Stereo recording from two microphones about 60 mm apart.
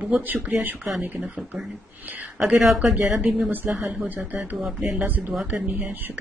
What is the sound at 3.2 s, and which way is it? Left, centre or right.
Speech, right.